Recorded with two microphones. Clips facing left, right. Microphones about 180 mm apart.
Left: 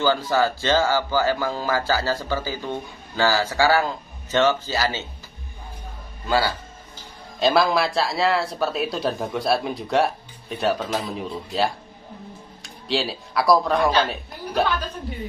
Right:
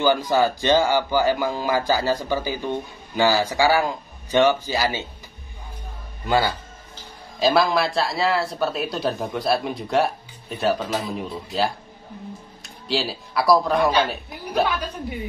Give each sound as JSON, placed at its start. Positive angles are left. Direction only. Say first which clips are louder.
{"t": 0.0, "sound": "speech", "louder": "right 2 dB", "side_deg": -15}
{"t": 6.2, "sound": "a man's voice", "louder": "right 1 dB", "side_deg": -20}
{"t": 7.3, "sound": "speech", "louder": "even", "side_deg": 0}